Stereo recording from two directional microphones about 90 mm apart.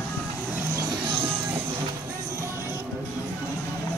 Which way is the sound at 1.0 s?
80° right.